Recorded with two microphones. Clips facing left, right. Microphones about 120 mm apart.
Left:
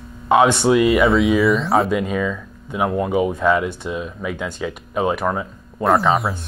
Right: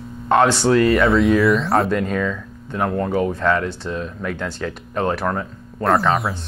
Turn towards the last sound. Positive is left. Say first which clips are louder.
# left 1 dB
turn(degrees=0)  # may be behind; listen again after turning